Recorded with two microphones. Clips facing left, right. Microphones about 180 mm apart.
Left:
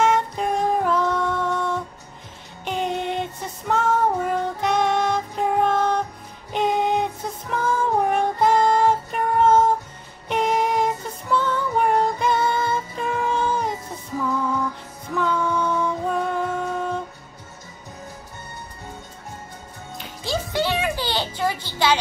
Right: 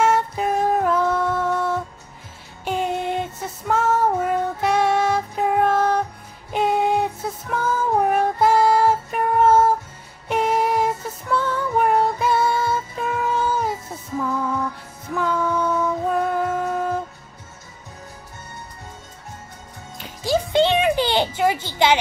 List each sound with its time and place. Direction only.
0.0 s music: 5° right (ahead or behind)
2.6 s female singing: 5° right (ahead or behind)
6.5 s music: 5° right (ahead or behind)
15.1 s music: 5° right (ahead or behind)
20.2 s a sound: 20° right (ahead or behind)